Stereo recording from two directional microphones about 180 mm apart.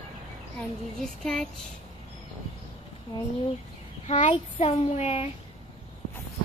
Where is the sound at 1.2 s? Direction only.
5° left (ahead or behind).